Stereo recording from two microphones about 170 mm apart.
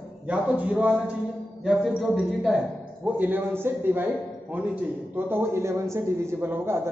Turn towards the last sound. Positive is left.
turn(degrees=-15)  # may be behind; listen again after turning